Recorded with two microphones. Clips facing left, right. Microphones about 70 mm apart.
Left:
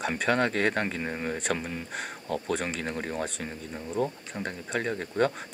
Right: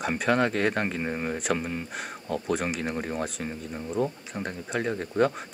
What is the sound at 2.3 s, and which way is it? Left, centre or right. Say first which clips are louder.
Speech: right 2 dB; centre.